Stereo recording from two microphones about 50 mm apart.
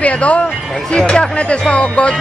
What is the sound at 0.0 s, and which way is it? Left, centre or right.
Speech, left.